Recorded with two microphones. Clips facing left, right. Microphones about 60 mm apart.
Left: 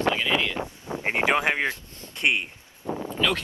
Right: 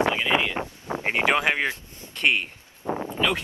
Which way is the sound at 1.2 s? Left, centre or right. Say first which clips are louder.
Even; left.